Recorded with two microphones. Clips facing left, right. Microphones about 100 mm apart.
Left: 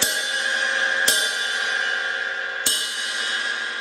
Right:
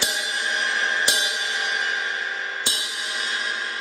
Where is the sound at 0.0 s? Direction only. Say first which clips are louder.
Left 1 dB; centre (ahead or behind).